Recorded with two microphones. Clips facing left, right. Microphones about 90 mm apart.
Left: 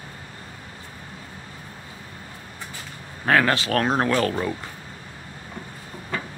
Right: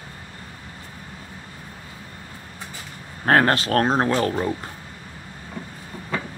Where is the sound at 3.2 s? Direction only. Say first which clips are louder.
Right 2 dB; 45° right (ahead or behind); by 4.3 s 25° right (ahead or behind).